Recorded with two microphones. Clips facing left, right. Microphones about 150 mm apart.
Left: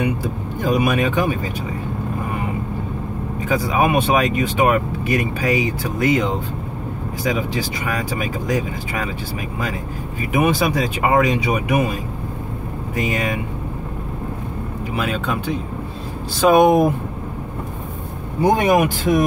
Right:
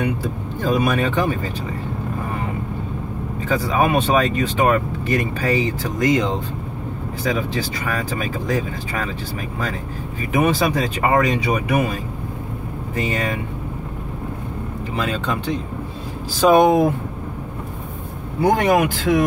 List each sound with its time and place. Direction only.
0.6 s speech: 15° left (ahead or behind)
3.4 s speech: 10° left (ahead or behind)
10.3 s speech: 10° left (ahead or behind)
15.0 s speech: 10° left (ahead or behind)
16.6 s speech: 15° left (ahead or behind)
18.4 s speech: 15° left (ahead or behind)